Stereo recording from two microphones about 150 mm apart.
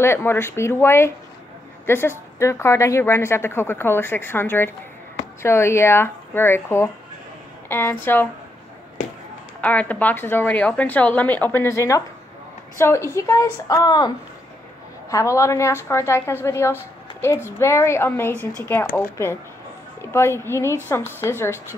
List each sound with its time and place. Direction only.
0.0 s a woman's voice: 15° left (ahead or behind)
9.6 s a woman's voice: 10° left (ahead or behind)